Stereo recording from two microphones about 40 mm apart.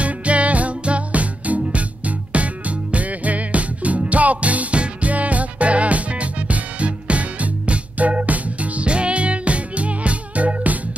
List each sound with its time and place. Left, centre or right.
0.0 s music: right